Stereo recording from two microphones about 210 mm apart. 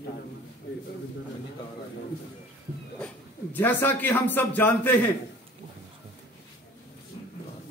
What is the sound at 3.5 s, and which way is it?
A man's voice, 10° left (ahead or behind).